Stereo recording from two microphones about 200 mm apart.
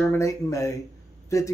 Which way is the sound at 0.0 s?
15° left (ahead or behind).